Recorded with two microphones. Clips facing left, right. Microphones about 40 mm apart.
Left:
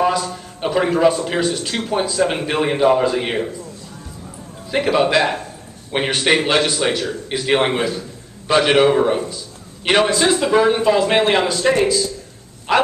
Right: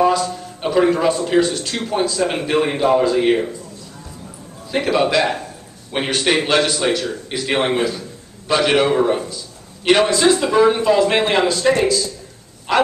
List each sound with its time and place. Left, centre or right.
0.0 s a man's voice: centre
4.6 s a man's voice: centre